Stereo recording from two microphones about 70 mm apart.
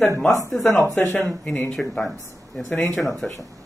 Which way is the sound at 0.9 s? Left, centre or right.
Left.